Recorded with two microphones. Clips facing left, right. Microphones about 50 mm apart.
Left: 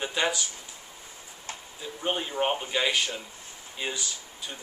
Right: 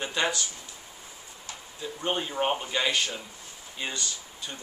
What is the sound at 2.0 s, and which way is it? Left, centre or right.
Speech, centre.